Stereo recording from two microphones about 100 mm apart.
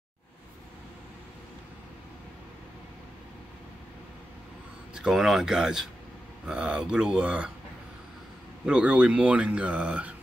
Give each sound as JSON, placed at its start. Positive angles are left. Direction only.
{"t": 4.9, "sound": "speech", "side_deg": -5}
{"t": 8.6, "sound": "speech", "side_deg": -10}